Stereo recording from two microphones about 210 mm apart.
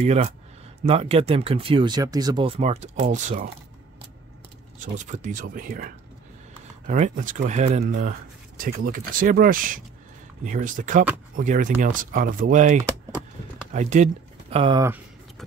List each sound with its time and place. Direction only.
0.0 s speech: 30° right (ahead or behind)
4.7 s speech: 35° right (ahead or behind)